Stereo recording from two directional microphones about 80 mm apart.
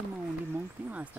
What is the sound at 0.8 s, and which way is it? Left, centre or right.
Speech, right.